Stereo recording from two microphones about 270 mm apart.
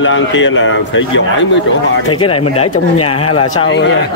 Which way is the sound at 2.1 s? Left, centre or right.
Centre.